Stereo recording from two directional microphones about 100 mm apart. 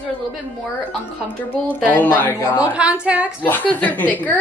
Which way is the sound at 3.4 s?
15° left (ahead or behind).